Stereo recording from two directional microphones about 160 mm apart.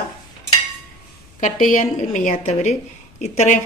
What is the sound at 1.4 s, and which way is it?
A woman's voice, 55° left (ahead or behind).